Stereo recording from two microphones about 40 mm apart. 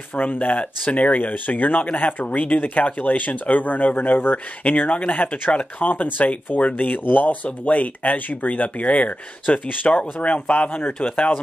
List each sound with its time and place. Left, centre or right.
0.1 s speech: left
5.1 s speech: left
5.5 s speech: left
6.1 s speech: left